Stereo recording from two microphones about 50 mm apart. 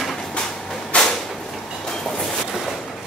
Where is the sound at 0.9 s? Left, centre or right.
Left.